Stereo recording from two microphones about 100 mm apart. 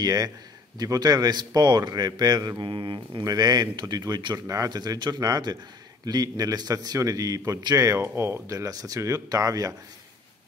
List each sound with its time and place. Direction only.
0.0 s a man's voice: 40° right (ahead or behind)
3.3 s a man's voice: 40° right (ahead or behind)